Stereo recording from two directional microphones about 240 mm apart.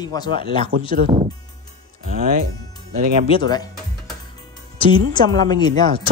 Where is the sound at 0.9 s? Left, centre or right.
Right.